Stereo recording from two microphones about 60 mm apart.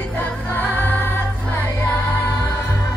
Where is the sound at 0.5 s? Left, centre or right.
Left.